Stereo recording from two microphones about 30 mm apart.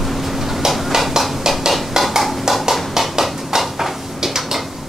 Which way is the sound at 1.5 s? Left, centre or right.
Centre.